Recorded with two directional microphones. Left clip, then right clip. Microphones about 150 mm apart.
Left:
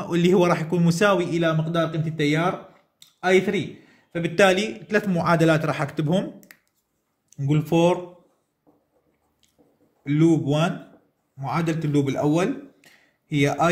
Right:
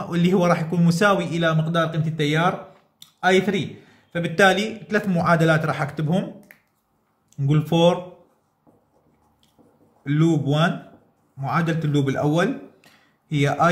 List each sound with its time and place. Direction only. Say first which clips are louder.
0.0 s a man's voice: left 2 dB; 40° left (ahead or behind)
7.3 s speech: even; 20° left (ahead or behind)
10.0 s speech: left 2 dB; 20° left (ahead or behind)